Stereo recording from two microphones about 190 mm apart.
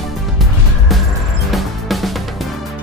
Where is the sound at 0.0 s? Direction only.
Centre (ahead or behind).